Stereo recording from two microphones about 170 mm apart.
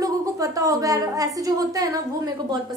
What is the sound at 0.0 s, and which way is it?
A woman's voice, 20° right (ahead or behind).